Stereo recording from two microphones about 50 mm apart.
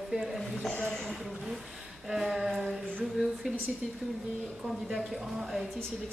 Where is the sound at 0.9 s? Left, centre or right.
Centre.